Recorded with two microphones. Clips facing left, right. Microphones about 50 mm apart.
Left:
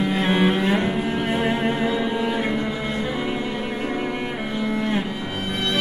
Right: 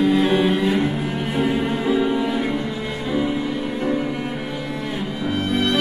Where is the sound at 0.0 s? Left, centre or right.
Left.